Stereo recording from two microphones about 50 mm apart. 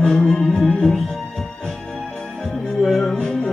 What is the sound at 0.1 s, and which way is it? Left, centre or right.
Music, centre.